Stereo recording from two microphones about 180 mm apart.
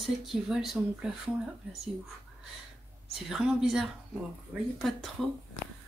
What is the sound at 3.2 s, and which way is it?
Speech, 5° right (ahead or behind).